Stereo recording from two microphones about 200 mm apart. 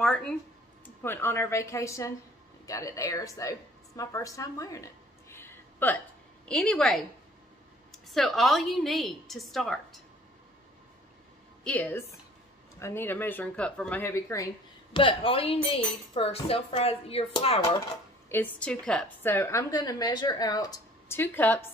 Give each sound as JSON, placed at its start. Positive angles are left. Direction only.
{"t": 0.0, "sound": "a woman's voice", "side_deg": 5}
{"t": 5.3, "sound": "a sound", "side_deg": 10}
{"t": 6.4, "sound": "a woman's voice", "side_deg": 5}
{"t": 11.6, "sound": "a woman's voice", "side_deg": 10}
{"t": 15.0, "sound": "speech", "side_deg": 25}
{"t": 18.3, "sound": "a woman's voice", "side_deg": 5}